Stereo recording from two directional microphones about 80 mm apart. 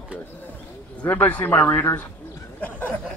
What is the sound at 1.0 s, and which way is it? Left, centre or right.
Speech, left.